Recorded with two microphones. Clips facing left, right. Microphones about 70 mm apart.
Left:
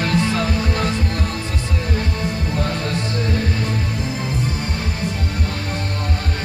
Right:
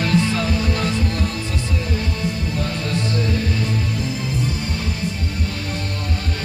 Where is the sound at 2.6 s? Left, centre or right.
Left.